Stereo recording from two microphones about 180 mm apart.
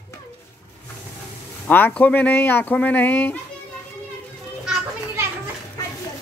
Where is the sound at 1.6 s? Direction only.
10° left (ahead or behind).